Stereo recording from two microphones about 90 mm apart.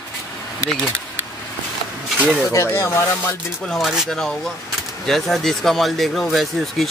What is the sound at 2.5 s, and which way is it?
Speech, 30° left (ahead or behind).